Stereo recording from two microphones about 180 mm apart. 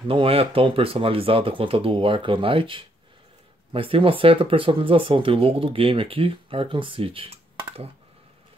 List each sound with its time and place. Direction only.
0.1 s speech: 30° right (ahead or behind)